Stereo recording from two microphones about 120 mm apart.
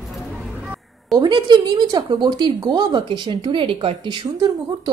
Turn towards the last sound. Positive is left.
turn(degrees=-40)  # may be behind; listen again after turning